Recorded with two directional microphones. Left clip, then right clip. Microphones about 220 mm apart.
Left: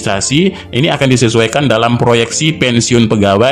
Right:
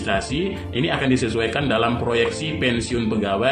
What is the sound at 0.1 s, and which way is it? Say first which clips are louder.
Speech: left 9 dB; 50° left (ahead or behind).